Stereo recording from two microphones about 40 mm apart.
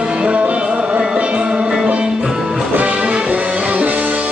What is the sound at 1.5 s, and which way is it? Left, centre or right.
Music, centre.